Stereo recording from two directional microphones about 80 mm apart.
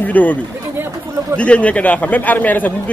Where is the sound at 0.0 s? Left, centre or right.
Left.